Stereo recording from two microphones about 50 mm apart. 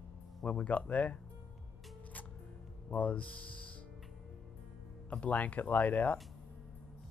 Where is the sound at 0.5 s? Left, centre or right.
Left.